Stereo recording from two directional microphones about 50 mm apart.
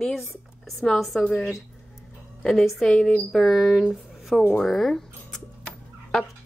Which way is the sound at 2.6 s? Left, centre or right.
Centre.